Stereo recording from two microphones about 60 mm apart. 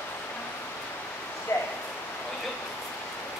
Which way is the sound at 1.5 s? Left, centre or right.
Left.